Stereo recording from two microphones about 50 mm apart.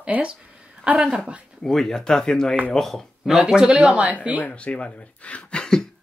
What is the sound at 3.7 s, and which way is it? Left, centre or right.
Speech, right.